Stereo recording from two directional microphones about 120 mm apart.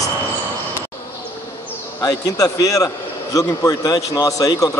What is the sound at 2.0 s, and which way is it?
A man's voice, 30° left (ahead or behind).